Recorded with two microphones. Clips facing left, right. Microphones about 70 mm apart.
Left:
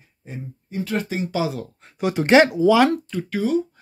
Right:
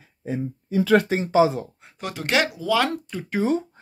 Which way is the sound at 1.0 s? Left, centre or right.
Right.